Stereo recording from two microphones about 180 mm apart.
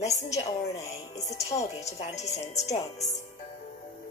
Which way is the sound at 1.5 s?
40° left (ahead or behind).